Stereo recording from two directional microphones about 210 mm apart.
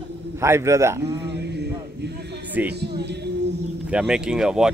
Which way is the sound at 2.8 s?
55° right (ahead or behind).